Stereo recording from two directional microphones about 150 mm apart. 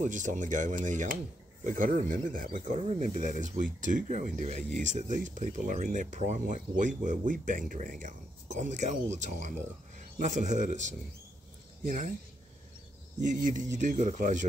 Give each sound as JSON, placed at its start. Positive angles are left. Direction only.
{"t": 0.0, "sound": "speech", "side_deg": -55}
{"t": 13.2, "sound": "speech", "side_deg": -60}